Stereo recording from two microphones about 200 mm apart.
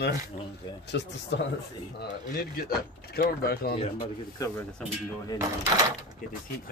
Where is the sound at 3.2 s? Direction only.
50° left (ahead or behind).